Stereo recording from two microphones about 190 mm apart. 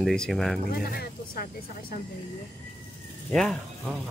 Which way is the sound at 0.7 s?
55° left (ahead or behind).